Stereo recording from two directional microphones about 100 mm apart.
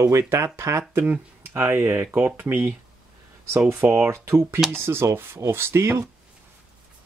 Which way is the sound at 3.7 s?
15° right (ahead or behind).